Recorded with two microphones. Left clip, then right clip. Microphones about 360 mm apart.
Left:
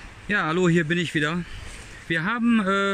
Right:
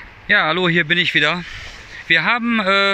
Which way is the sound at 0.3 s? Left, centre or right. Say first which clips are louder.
Right 7 dB; centre.